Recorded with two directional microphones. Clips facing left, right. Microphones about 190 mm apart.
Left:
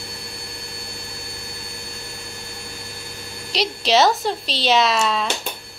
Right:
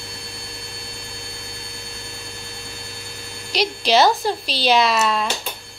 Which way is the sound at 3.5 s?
Centre (ahead or behind).